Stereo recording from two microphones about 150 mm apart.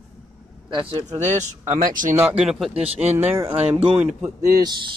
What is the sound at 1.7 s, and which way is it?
Speech, 60° right (ahead or behind).